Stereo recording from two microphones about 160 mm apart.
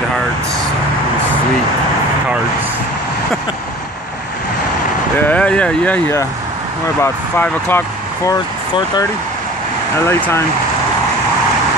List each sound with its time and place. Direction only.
5.2 s speech: 10° left (ahead or behind)
8.3 s speech: 25° left (ahead or behind)
10.0 s speech: 15° left (ahead or behind)